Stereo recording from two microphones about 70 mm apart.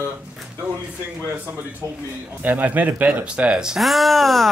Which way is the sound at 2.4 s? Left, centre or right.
Right.